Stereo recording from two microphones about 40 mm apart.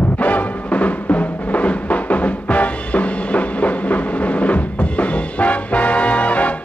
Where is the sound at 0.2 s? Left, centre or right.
Left.